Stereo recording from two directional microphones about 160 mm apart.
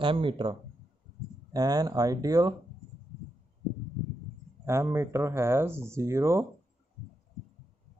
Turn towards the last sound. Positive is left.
turn(degrees=-15)  # may be behind; listen again after turning